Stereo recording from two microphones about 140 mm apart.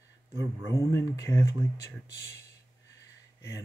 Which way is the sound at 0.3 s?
30° right (ahead or behind).